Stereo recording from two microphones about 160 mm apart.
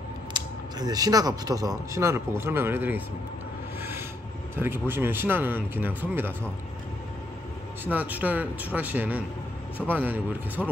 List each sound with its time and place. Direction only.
0.3 s speech: 25° right (ahead or behind)
4.6 s speech: 15° right (ahead or behind)
7.8 s speech: 10° right (ahead or behind)